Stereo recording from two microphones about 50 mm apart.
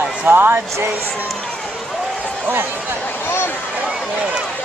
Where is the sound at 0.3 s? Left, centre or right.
Right.